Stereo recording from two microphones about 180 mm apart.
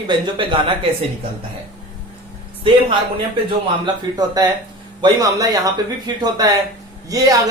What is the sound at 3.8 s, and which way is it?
Speech, 20° right (ahead or behind).